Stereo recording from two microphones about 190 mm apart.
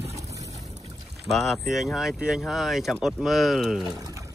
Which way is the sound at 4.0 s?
15° right (ahead or behind).